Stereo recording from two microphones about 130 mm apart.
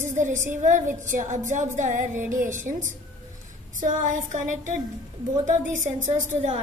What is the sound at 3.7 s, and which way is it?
A woman's voice, 75° right (ahead or behind).